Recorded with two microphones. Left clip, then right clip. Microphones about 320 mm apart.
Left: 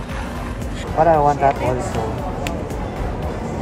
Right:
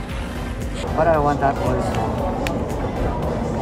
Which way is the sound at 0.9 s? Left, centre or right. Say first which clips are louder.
Left 3 dB; left.